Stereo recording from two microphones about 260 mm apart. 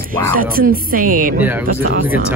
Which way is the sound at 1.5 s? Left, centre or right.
Centre.